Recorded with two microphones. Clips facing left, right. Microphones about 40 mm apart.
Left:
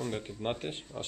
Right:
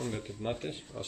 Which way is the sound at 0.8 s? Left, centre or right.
Left.